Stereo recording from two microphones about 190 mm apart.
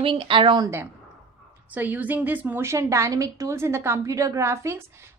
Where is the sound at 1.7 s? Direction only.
10° right (ahead or behind).